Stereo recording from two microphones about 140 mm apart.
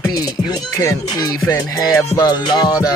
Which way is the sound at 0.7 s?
25° left (ahead or behind).